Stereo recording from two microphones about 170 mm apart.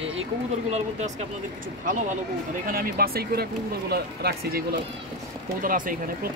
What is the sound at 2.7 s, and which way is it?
Speech, 60° right (ahead or behind).